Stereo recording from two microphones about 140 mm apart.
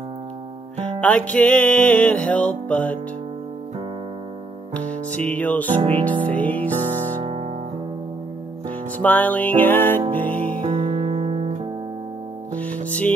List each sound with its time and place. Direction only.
1.0 s music: 10° left (ahead or behind)
4.7 s music: 10° left (ahead or behind)
5.8 s music: 35° right (ahead or behind)
6.2 s music: 10° left (ahead or behind)
7.2 s music: 45° right (ahead or behind)
8.6 s music: 10° left (ahead or behind)
10.6 s music: 40° right (ahead or behind)
12.5 s music: 10° left (ahead or behind)